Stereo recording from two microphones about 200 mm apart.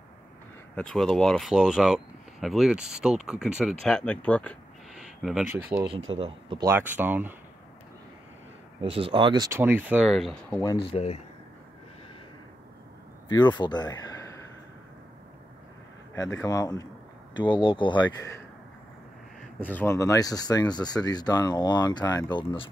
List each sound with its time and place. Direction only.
0.7 s speech: 5° left (ahead or behind)
5.9 s speech: 75° right (ahead or behind)
6.1 s speech: 25° right (ahead or behind)
6.6 s speech: 10° right (ahead or behind)
8.8 s speech: 30° right (ahead or behind); by 10.6 s centre (ahead or behind)
10.9 s speech: 30° left (ahead or behind)
13.3 s speech: 20° left (ahead or behind)
16.2 s speech: 15° left (ahead or behind)
19.6 s speech: 10° left (ahead or behind)